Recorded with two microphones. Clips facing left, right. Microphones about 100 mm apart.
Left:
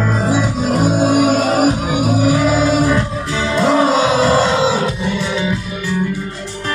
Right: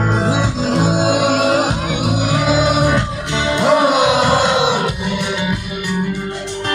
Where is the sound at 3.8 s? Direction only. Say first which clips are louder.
Even; 65° right (ahead or behind).